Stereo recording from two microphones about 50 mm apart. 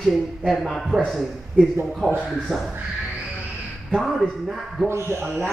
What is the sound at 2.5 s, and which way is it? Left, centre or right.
Speech, centre.